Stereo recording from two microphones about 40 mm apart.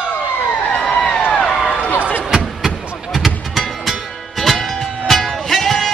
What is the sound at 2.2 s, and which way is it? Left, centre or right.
Vehicle, centre.